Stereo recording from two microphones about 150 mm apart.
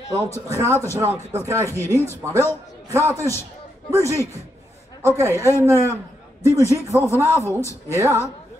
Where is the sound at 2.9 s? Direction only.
20° right (ahead or behind).